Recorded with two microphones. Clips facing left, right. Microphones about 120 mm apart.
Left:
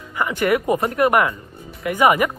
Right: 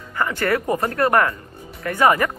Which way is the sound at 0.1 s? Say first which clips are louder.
Left 2 dB; 15° left (ahead or behind).